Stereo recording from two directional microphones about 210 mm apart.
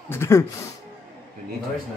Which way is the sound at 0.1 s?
10° left (ahead or behind).